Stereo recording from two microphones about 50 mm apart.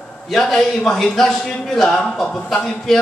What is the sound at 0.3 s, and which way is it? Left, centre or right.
A man's voice, centre.